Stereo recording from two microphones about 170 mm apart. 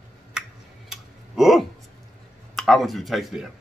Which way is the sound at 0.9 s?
Centre (ahead or behind).